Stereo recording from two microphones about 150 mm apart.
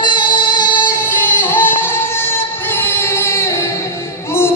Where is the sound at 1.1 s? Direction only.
15° left (ahead or behind).